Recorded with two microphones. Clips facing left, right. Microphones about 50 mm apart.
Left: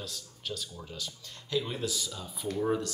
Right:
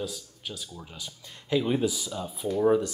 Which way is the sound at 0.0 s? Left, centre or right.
Centre.